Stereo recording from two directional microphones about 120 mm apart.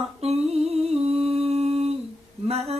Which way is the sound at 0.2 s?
60° right (ahead or behind).